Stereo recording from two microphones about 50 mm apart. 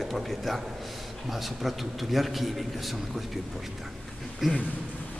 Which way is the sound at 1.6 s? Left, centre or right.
Centre.